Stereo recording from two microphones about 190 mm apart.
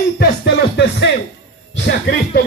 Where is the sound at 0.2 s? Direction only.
55° left (ahead or behind).